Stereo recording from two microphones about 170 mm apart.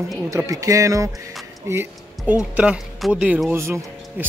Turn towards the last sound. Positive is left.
turn(degrees=-15)  # may be behind; listen again after turning